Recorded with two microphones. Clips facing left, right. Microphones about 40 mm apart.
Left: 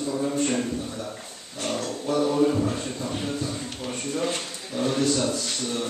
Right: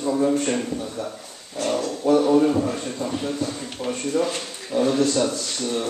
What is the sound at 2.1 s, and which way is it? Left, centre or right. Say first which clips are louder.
Speech: right 5 dB; right.